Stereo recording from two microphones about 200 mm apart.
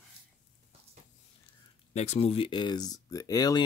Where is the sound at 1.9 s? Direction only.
35° left (ahead or behind).